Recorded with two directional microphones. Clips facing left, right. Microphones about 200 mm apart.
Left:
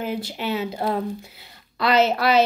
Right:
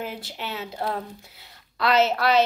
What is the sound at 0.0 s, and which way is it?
A woman's voice, centre (ahead or behind).